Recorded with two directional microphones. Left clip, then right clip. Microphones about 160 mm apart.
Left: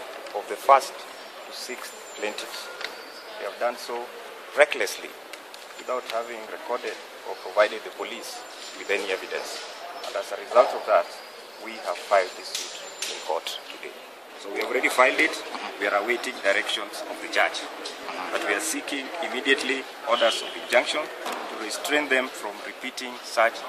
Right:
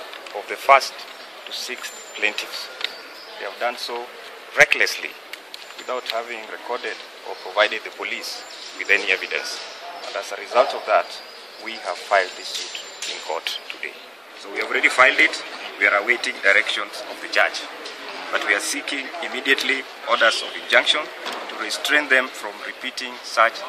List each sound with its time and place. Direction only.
0.5 s speech: 5° left (ahead or behind)
2.1 s speech: 10° left (ahead or behind)
4.6 s speech: 10° left (ahead or behind)
5.9 s speech: centre (ahead or behind)
13.3 s speech: 10° left (ahead or behind)
14.6 s speech: 15° left (ahead or behind)